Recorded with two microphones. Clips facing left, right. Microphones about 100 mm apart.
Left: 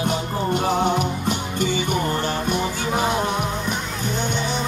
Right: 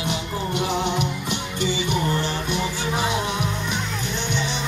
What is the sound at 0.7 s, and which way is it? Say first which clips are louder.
Music: left 3 dB; 45° left (ahead or behind).